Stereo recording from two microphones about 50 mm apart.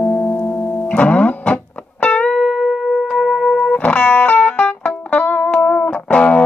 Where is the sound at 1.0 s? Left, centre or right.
Left.